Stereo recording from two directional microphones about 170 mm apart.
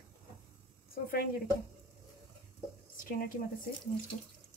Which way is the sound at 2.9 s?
55° left (ahead or behind).